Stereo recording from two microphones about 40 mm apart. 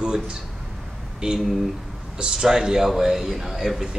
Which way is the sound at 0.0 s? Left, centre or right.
Right.